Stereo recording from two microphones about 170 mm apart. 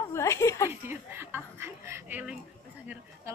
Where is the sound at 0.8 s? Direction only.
15° right (ahead or behind).